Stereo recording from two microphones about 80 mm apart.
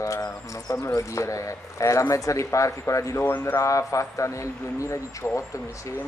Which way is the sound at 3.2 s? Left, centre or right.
Left.